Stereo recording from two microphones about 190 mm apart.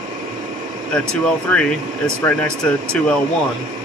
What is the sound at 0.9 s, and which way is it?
Speech, 5° left (ahead or behind).